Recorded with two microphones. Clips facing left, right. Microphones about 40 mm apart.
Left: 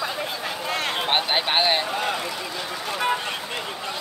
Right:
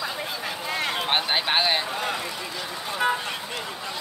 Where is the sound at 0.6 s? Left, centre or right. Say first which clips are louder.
Left 1 dB; left.